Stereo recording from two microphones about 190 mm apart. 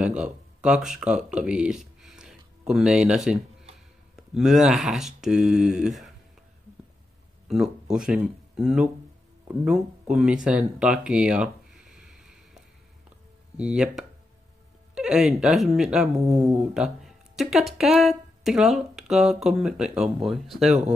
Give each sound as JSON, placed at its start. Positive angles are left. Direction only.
{"t": 0.0, "sound": "speech", "side_deg": -5}
{"t": 7.4, "sound": "speech", "side_deg": 0}
{"t": 13.6, "sound": "speech", "side_deg": -5}
{"t": 16.2, "sound": "speech", "side_deg": -20}
{"t": 16.5, "sound": "speech", "side_deg": -5}